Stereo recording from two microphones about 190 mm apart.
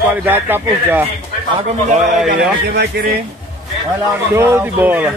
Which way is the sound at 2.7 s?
60° right (ahead or behind).